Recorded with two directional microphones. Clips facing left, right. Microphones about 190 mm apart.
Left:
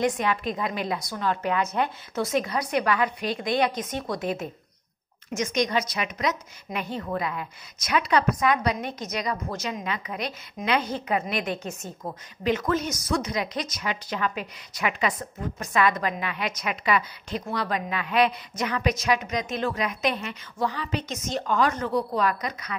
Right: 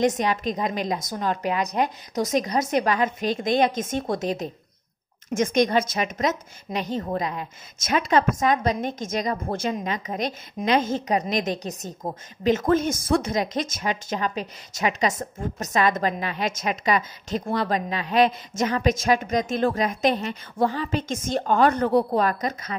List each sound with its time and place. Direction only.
0.0 s a woman's voice: 40° right (ahead or behind)
1.4 s speech: 15° right (ahead or behind)
2.1 s a woman's voice: 40° right (ahead or behind)
5.3 s a woman's voice: 55° right (ahead or behind)
12.4 s a woman's voice: 50° right (ahead or behind)
14.2 s a woman's voice: 30° right (ahead or behind)
15.0 s a woman's voice: 40° right (ahead or behind)